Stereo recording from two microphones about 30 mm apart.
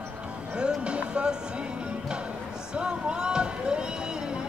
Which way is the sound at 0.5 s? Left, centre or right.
Right.